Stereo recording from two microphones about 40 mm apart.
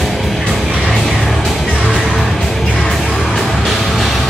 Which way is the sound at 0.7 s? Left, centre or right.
Right.